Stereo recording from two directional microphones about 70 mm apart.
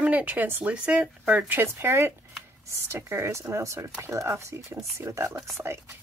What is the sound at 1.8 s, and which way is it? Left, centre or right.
Speech, right.